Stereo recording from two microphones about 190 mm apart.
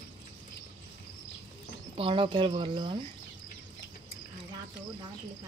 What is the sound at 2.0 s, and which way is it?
Speech, 25° right (ahead or behind).